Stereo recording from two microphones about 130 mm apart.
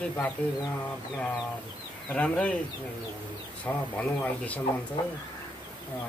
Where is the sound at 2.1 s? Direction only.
10° left (ahead or behind).